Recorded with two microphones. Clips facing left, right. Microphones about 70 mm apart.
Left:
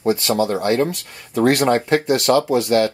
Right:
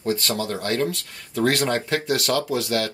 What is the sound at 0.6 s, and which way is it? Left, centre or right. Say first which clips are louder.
Speech: left 6 dB; left.